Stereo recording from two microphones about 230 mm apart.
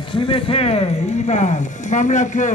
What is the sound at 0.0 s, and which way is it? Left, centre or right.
Music, left.